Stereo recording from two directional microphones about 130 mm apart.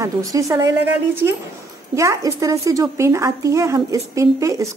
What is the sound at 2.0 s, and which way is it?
A woman's voice, 25° right (ahead or behind).